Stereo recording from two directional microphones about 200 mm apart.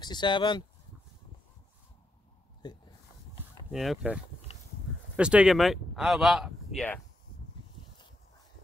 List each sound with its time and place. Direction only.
0.0 s speech: 20° left (ahead or behind)
2.6 s speech: 20° left (ahead or behind)
3.7 s speech: centre (ahead or behind)
4.5 s a sound: 30° left (ahead or behind)
5.1 s speech: 5° right (ahead or behind)